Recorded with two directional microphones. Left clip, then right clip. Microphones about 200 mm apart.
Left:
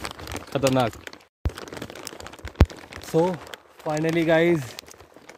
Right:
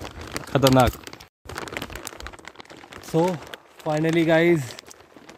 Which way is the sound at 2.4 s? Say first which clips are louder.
Left 12 dB; 20° left (ahead or behind).